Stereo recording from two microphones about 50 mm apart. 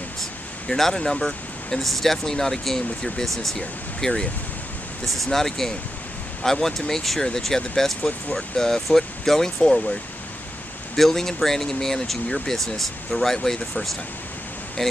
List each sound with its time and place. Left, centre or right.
0.7 s speech: centre
5.0 s speech: centre
11.0 s speech: centre